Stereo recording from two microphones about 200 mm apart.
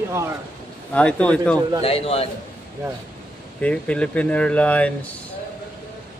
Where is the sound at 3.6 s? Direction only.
5° left (ahead or behind).